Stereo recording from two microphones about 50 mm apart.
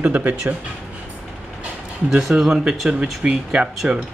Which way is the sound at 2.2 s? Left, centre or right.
Centre.